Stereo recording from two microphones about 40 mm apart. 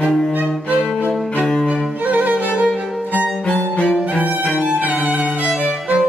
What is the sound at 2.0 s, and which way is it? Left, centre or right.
Music, right.